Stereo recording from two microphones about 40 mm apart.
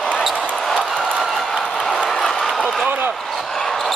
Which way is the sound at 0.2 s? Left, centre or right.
Centre.